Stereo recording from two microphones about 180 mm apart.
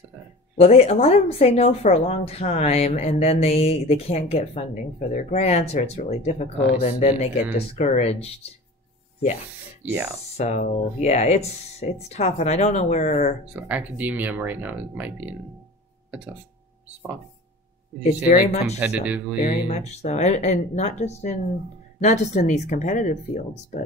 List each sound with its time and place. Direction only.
0.6 s speech: 35° left (ahead or behind)
10.3 s speech: 40° left (ahead or behind)
13.5 s speech: 10° right (ahead or behind)
18.0 s speech: 40° left (ahead or behind)
18.8 s speech: 5° right (ahead or behind)
19.7 s speech: 40° left (ahead or behind)